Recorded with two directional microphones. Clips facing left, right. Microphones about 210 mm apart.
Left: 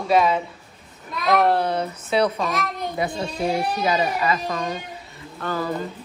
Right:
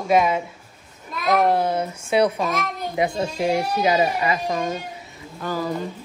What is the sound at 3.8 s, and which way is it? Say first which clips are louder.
Speech: right 2 dB; 20° right (ahead or behind).